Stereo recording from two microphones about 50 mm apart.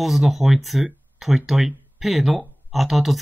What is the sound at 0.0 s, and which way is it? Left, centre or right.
Speech, centre.